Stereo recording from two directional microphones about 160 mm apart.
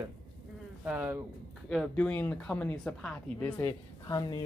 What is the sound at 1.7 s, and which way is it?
Speech, 5° left (ahead or behind).